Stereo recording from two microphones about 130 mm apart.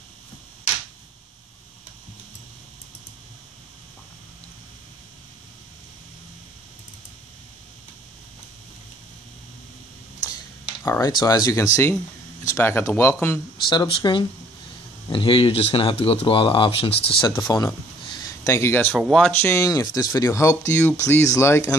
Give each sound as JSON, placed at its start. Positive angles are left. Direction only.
{"t": 10.2, "sound": "speech", "side_deg": 30}
{"t": 13.7, "sound": "speech", "side_deg": 35}
{"t": 18.0, "sound": "a sound", "side_deg": 35}
{"t": 18.4, "sound": "speech", "side_deg": 20}
{"t": 18.9, "sound": "speech", "side_deg": 0}
{"t": 19.4, "sound": "speech", "side_deg": 25}